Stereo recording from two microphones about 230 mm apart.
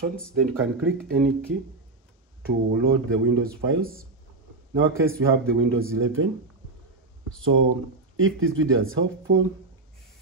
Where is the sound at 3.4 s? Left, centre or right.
Right.